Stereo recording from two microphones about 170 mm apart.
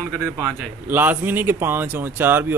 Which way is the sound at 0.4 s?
10° right (ahead or behind).